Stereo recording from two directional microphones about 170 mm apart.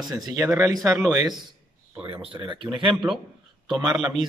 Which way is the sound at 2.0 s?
30° right (ahead or behind).